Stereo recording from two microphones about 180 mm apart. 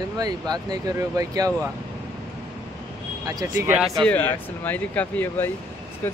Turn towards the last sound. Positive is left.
turn(degrees=10)  # may be behind; listen again after turning